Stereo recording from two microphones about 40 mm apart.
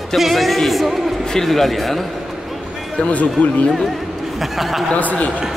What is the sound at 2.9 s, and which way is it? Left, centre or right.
Speech, left.